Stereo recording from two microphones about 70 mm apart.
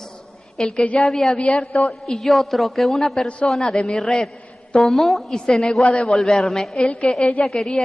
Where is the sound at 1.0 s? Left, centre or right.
Centre.